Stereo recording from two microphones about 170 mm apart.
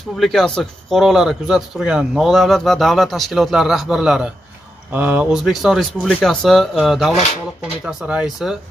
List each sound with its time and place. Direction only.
0.2 s speech: centre (ahead or behind)